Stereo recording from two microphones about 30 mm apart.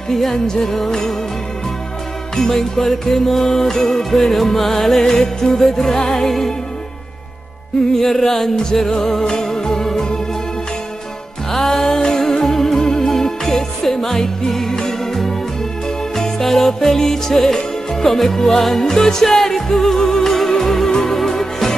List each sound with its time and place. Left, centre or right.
0.1 s music: centre
2.3 s music: centre
7.9 s music: centre
11.5 s music: centre
14.7 s music: left
16.2 s music: centre